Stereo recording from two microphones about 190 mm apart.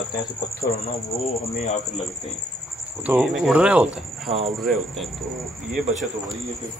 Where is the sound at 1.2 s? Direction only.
35° left (ahead or behind).